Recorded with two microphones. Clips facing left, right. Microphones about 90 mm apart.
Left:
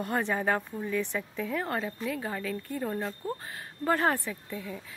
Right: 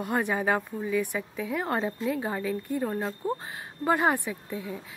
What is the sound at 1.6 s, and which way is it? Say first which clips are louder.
Speech: right 4 dB; 25° right (ahead or behind).